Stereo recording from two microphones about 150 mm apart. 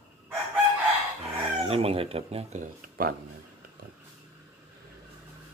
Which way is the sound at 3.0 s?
75° right (ahead or behind).